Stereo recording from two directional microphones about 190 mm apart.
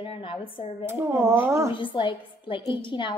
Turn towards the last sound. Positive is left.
turn(degrees=25)  # may be behind; listen again after turning